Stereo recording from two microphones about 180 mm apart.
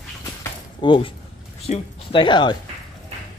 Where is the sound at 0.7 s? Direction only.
30° left (ahead or behind).